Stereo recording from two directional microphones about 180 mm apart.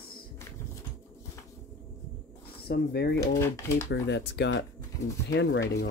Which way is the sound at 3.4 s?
15° left (ahead or behind).